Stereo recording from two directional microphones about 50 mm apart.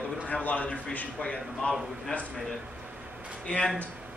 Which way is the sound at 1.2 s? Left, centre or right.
Centre.